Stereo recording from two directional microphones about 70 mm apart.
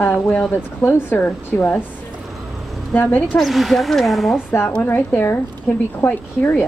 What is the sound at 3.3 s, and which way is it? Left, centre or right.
Speech, centre.